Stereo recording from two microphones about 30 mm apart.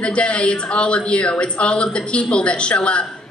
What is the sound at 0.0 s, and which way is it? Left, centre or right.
A woman's voice, left.